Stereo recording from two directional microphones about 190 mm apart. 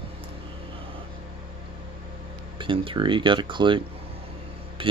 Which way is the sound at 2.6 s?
25° right (ahead or behind).